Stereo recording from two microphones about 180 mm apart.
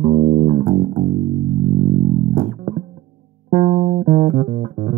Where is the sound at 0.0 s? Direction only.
35° right (ahead or behind).